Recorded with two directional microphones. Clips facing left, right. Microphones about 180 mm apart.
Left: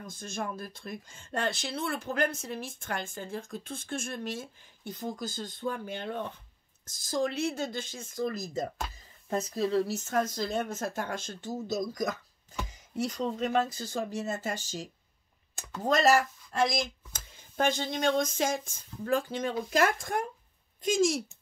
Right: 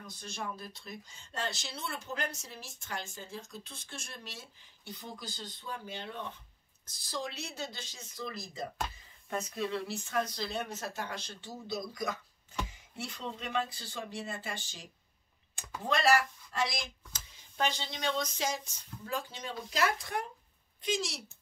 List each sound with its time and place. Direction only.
0.0 s speech: 50° left (ahead or behind)